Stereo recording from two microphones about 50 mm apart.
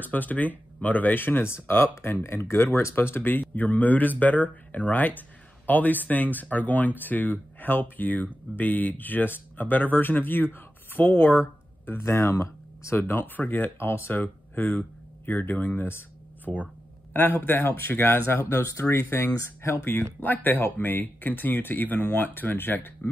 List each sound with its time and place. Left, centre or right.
0.0 s speech: left
1.5 s speech: left
12.3 s speech: left
12.9 s speech: left
13.7 s speech: left
16.5 s speech: left
17.1 s speech: left
18.5 s speech: left
18.9 s speech: left
19.3 s speech: left
19.8 s speech: left
20.2 s speech: left